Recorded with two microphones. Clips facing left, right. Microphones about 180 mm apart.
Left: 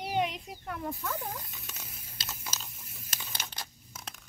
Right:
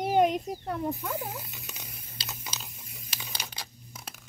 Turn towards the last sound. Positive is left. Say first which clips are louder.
# right 1 dB
turn(degrees=0)  # may be behind; listen again after turning